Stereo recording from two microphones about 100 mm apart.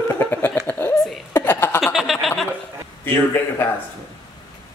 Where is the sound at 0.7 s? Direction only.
25° left (ahead or behind).